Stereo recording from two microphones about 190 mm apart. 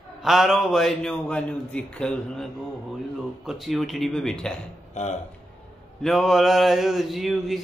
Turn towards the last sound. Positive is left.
turn(degrees=0)  # may be behind; listen again after turning